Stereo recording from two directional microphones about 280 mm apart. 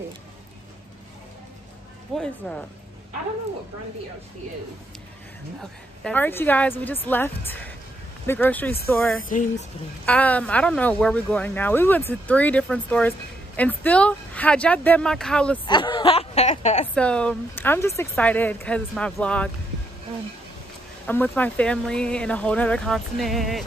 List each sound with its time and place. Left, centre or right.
2.1 s speech: centre
5.6 s a woman's voice: centre
9.2 s speech: left
10.0 s speech: centre
15.6 s a sound: centre
16.9 s speech: centre
21.1 s speech: centre